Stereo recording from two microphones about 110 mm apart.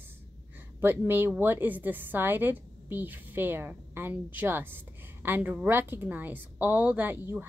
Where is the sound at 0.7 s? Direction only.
20° right (ahead or behind).